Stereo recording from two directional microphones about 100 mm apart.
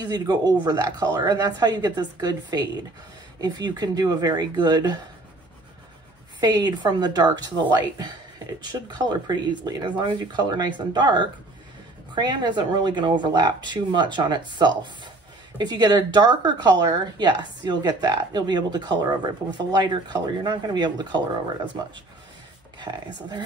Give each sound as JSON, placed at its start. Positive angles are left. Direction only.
{"t": 0.0, "sound": "a woman's voice", "side_deg": -40}
{"t": 6.4, "sound": "speech", "side_deg": -45}
{"t": 15.5, "sound": "speech", "side_deg": -45}
{"t": 22.8, "sound": "speech", "side_deg": -45}